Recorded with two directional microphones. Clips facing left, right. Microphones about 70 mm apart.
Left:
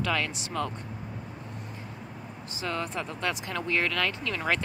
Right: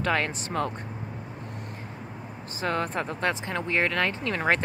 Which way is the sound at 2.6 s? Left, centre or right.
Right.